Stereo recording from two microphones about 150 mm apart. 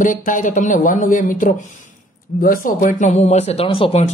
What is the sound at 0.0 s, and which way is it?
Speech, 60° left (ahead or behind).